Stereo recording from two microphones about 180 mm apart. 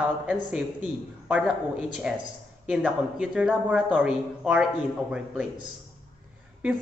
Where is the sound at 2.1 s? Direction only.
5° right (ahead or behind).